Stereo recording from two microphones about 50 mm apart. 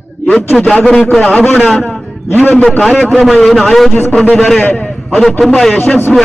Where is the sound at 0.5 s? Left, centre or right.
Centre.